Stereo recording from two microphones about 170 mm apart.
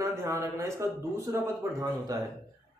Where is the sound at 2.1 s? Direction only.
20° right (ahead or behind).